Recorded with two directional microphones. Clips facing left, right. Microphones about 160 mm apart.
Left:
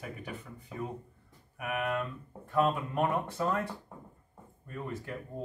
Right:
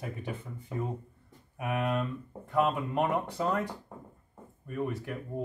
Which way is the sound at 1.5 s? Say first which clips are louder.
Right 2 dB; 25° right (ahead or behind).